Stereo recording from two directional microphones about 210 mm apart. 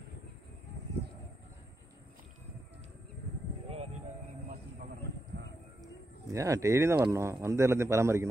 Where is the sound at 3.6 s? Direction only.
30° right (ahead or behind).